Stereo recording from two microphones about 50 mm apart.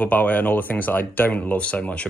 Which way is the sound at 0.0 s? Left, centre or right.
Left.